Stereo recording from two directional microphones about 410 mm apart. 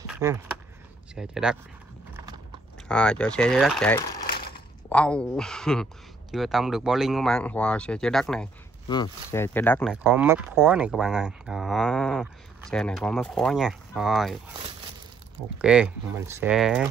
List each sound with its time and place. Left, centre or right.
0.0 s speech: centre
2.9 s speech: centre
4.3 s a sound: left
4.8 s speech: centre
15.6 s speech: centre